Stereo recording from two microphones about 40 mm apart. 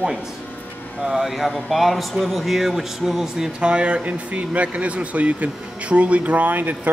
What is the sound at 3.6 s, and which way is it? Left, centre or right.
Speech, right.